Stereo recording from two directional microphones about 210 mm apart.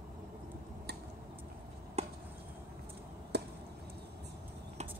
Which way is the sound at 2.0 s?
30° right (ahead or behind).